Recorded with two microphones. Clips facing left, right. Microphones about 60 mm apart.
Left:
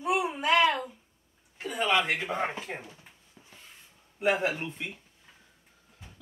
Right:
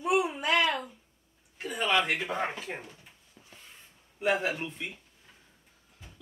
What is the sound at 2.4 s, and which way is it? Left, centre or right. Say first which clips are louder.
Speech: left 1 dB; left.